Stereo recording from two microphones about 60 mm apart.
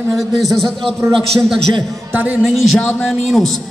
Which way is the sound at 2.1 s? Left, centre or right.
Right.